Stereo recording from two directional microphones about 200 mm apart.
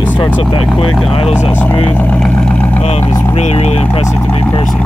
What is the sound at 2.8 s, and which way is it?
Speech, 30° left (ahead or behind).